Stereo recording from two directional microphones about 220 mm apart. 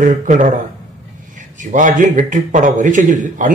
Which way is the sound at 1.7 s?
35° right (ahead or behind).